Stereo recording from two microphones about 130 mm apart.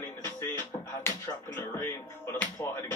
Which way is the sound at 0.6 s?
20° left (ahead or behind).